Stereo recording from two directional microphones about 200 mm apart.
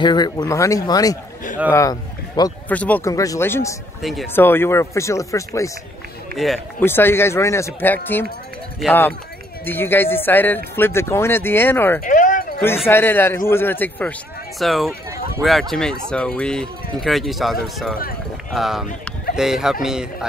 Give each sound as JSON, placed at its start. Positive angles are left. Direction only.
{"t": 0.0, "sound": "a man's voice", "side_deg": 20}
{"t": 2.7, "sound": "speech", "side_deg": 10}
{"t": 4.0, "sound": "speech", "side_deg": 0}
{"t": 4.3, "sound": "speech", "side_deg": 10}
{"t": 6.3, "sound": "speech", "side_deg": 0}
{"t": 6.8, "sound": "speech", "side_deg": 10}
{"t": 12.0, "sound": "a sound", "side_deg": 40}
{"t": 12.5, "sound": "speech", "side_deg": 5}